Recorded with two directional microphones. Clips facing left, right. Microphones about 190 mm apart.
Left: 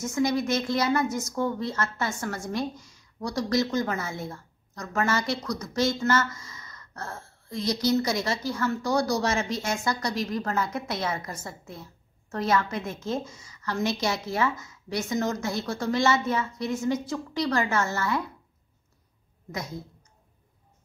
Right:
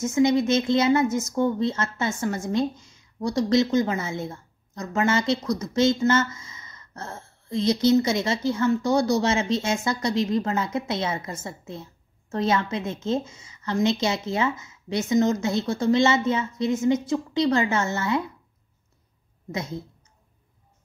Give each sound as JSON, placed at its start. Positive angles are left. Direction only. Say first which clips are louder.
{"t": 0.0, "sound": "speech", "louder": "right 5 dB", "side_deg": -25}